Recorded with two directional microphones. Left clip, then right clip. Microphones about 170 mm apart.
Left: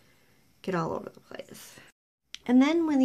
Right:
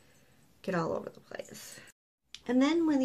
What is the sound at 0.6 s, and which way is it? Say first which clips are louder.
Speech: left 2 dB; 60° left (ahead or behind).